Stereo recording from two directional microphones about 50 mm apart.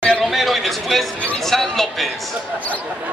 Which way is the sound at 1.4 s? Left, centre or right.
Centre.